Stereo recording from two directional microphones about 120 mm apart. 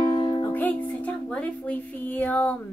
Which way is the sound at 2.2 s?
15° left (ahead or behind).